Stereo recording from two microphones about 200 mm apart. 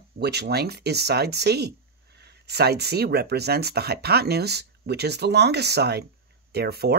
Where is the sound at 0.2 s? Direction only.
55° right (ahead or behind).